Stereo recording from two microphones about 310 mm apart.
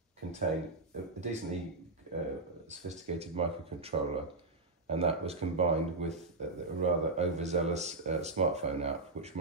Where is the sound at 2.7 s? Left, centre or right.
Right.